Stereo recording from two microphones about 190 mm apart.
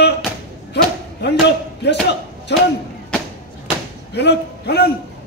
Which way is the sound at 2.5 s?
65° left (ahead or behind).